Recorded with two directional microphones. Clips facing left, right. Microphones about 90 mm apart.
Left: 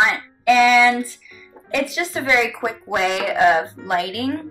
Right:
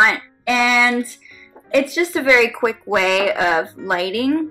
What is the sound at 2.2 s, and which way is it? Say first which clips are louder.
Speech: right 4 dB; 80° right.